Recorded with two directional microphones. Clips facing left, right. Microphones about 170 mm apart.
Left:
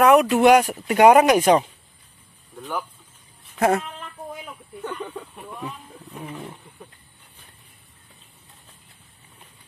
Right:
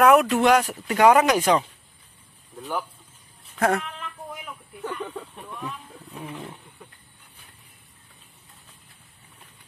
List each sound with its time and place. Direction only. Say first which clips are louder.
0.0 s speech: left 1 dB; centre (ahead or behind)
0.4 s speech: left 4 dB; 15° left (ahead or behind)
3.5 s speech: left 3 dB; 10° left (ahead or behind)
4.8 s speech: even; centre (ahead or behind)